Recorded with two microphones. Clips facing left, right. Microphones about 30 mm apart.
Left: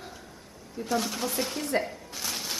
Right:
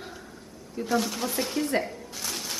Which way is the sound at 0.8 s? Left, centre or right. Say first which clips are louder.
Right 2 dB; centre.